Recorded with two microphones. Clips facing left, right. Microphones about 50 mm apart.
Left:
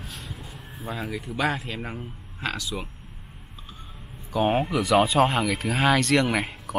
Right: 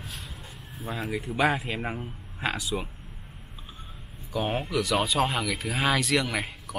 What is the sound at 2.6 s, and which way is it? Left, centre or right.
Speech, centre.